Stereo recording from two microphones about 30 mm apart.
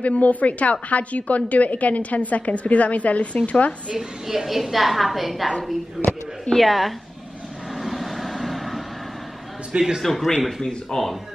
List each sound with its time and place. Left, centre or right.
0.0 s a woman's voice: left
4.3 s a woman's voice: centre
6.0 s speech: centre
6.5 s a woman's voice: centre
7.7 s vehicle: centre
9.7 s a man's voice: right
10.0 s speech: centre
10.6 s speech: left